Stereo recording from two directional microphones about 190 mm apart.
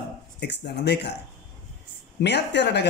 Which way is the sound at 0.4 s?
65° left (ahead or behind).